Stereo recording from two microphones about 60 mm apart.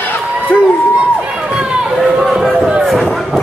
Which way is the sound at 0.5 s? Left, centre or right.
Left.